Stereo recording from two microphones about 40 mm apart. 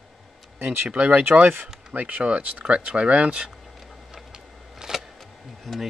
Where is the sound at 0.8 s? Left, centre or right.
Right.